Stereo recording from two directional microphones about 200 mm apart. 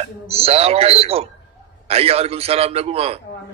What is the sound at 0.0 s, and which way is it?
A man's voice, 30° right (ahead or behind).